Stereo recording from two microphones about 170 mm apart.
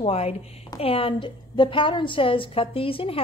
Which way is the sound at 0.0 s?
35° left (ahead or behind).